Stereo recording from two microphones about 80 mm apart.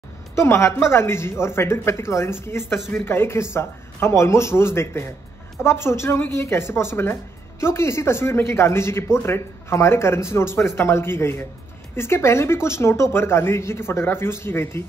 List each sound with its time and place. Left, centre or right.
0.7 s speech: left